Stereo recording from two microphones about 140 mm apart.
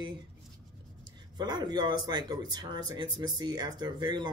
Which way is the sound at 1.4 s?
30° right (ahead or behind).